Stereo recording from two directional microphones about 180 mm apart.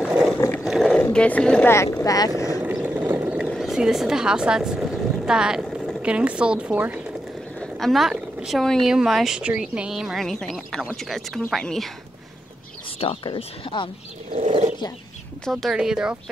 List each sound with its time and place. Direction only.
0.7 s roaring cats: centre (ahead or behind)
1.7 s speech: 15° left (ahead or behind)
2.6 s a sound: 10° right (ahead or behind)
3.4 s speech: centre (ahead or behind)
13.0 s speech: 30° left (ahead or behind)
14.3 s speech: 35° right (ahead or behind)
15.4 s speech: centre (ahead or behind)